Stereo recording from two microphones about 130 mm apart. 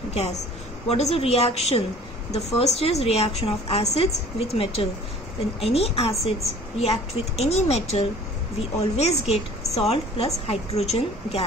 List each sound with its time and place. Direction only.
0.1 s a woman's voice: 55° left (ahead or behind)